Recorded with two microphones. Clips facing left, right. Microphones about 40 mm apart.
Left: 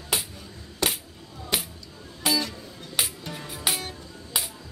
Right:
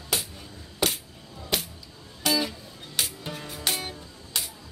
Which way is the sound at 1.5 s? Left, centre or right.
Centre.